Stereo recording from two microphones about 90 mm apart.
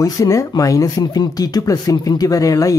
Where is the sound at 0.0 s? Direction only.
40° left (ahead or behind).